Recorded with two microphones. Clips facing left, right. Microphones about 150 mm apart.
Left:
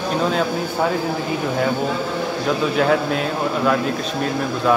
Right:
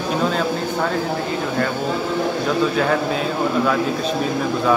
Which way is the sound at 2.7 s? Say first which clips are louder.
Left 1 dB; centre (ahead or behind).